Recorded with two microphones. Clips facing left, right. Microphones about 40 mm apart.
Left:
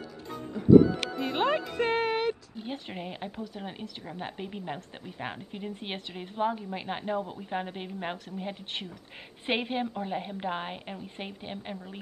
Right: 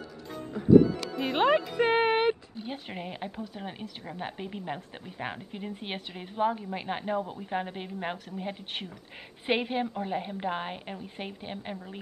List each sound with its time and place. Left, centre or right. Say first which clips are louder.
0.3 s music: even; centre
1.2 s speech: right 4 dB; centre
2.0 s a sound: right 4 dB; right
2.7 s a woman's voice: even; centre